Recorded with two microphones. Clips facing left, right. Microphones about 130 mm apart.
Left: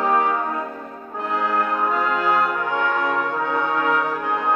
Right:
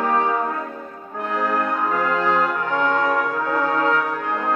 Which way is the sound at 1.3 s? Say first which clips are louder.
Even; 15° left (ahead or behind).